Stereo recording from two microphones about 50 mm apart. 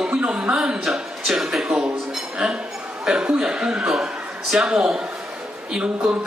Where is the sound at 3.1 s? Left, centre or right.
Centre.